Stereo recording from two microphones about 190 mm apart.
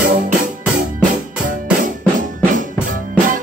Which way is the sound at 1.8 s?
45° right (ahead or behind).